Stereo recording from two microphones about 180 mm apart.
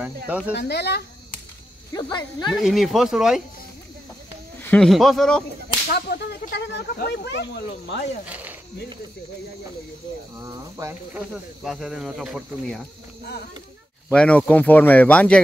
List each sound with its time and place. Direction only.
0.3 s speech: 10° right (ahead or behind)
0.6 s speech: 65° left (ahead or behind)
2.0 s speech: 25° left (ahead or behind)
2.5 s speech: centre (ahead or behind)
4.6 s speech: 10° left (ahead or behind)
5.9 s speech: 65° left (ahead or behind)
8.3 s speech: 10° right (ahead or behind)
10.4 s speech: 15° right (ahead or behind)
14.1 s speech: 5° left (ahead or behind)